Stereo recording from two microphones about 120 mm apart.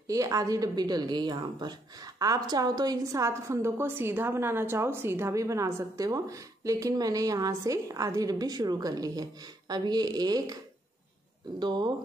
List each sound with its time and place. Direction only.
0.1 s a woman's voice: 30° right (ahead or behind)
11.6 s speech: 35° right (ahead or behind)